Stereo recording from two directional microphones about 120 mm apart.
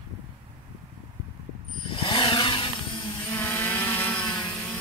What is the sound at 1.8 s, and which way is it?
Chainsaw, 45° left (ahead or behind).